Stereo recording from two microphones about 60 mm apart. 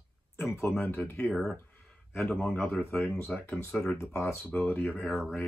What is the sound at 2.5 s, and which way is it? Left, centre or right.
Speech, left.